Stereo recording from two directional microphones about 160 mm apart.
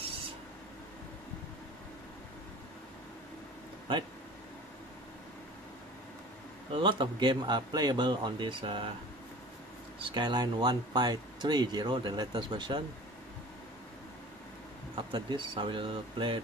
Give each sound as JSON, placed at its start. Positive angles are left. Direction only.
{"t": 6.7, "sound": "speech", "side_deg": -30}
{"t": 9.9, "sound": "speech", "side_deg": -30}
{"t": 15.0, "sound": "speech", "side_deg": -30}